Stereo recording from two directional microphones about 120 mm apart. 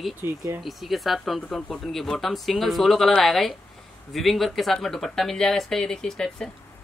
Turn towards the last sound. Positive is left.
turn(degrees=5)  # may be behind; listen again after turning